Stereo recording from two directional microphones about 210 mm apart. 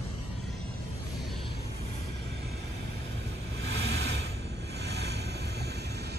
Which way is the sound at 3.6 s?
55° right (ahead or behind).